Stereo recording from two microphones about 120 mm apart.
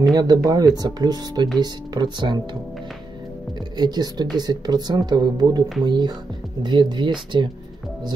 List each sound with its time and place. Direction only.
0.1 s speech: 30° right (ahead or behind)
3.7 s speech: 35° right (ahead or behind)